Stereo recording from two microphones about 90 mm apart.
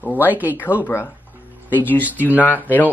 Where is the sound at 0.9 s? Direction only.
30° left (ahead or behind).